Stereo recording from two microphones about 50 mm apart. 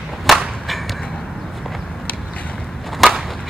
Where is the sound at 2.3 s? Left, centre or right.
Left.